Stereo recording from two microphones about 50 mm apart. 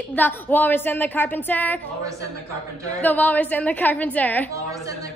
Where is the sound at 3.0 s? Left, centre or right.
Left.